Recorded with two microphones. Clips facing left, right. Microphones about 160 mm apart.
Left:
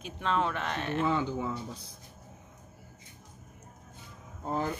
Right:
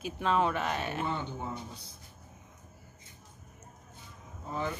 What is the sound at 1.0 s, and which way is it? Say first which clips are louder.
Speech: left 6 dB; 90° left.